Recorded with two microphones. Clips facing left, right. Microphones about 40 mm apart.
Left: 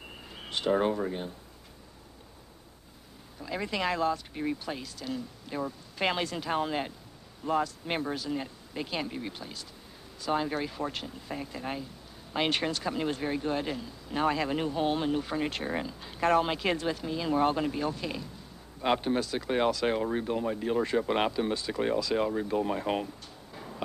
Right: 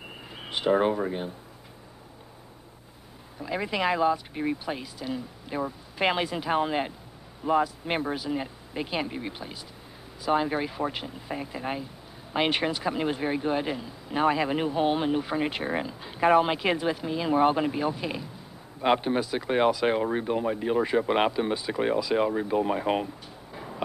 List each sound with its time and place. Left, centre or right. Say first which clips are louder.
0.3 s speech: right 4 dB; centre
3.3 s speech: right 4 dB; centre